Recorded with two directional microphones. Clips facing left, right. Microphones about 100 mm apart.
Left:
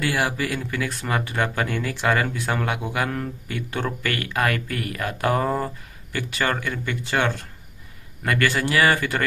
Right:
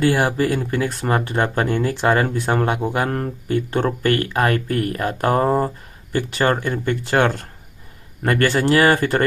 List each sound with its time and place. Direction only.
0.0 s speech: 35° right (ahead or behind)
8.2 s speech: 35° right (ahead or behind)